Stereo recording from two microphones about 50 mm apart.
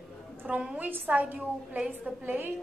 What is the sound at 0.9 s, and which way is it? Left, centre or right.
Speech, right.